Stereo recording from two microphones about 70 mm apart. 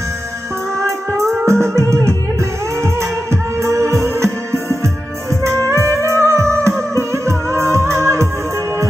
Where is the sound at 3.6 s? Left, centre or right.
Right.